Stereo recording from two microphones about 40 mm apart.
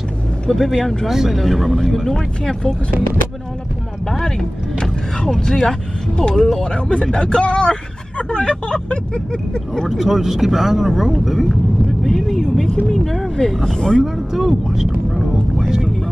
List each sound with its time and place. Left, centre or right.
0.5 s speech: centre
1.0 s speech: centre
2.0 s speech: centre
4.1 s speech: centre
9.8 s speech: centre
14.0 s speech: centre
15.1 s a sound: centre